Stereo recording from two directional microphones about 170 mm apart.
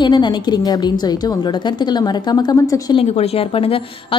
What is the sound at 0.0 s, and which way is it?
A woman's voice, 25° left (ahead or behind).